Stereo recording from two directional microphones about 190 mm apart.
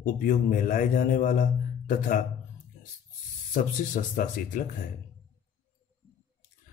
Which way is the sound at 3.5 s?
45° left (ahead or behind).